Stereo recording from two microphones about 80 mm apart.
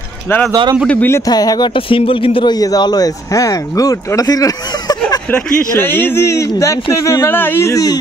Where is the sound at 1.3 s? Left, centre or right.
Left.